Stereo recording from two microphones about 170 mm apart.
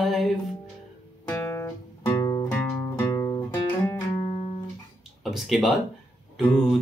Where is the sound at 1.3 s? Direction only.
15° left (ahead or behind).